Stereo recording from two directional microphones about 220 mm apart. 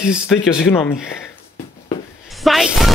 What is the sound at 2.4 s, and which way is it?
Speech, centre (ahead or behind).